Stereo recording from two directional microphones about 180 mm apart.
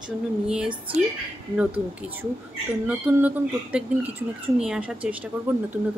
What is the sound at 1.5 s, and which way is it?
Speech, 10° right (ahead or behind).